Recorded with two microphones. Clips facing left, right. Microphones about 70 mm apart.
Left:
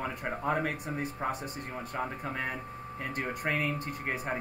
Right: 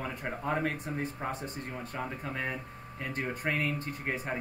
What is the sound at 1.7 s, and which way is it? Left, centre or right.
Speech, left.